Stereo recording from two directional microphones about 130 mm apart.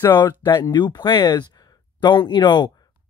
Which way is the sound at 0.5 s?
35° left (ahead or behind).